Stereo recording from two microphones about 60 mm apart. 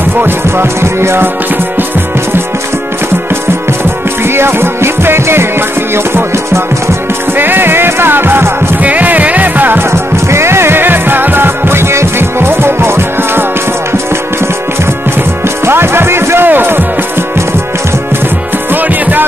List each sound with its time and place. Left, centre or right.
0.6 s music: right
4.2 s music: right
7.3 s music: right
8.8 s music: right
9.8 s music: right
15.6 s music: right
18.7 s music: right